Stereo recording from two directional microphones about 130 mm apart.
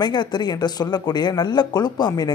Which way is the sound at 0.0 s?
35° left (ahead or behind).